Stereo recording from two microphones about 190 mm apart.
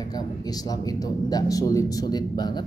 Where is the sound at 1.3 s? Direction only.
20° left (ahead or behind).